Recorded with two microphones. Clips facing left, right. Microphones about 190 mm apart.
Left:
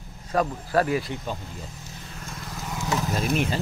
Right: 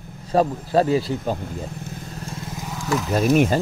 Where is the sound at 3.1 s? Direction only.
50° right (ahead or behind).